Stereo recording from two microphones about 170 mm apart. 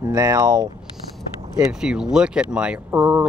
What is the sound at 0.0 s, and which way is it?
Speech, 20° right (ahead or behind).